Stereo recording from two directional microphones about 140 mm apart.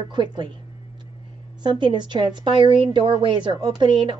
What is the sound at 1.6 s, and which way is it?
A woman's voice, 35° right (ahead or behind).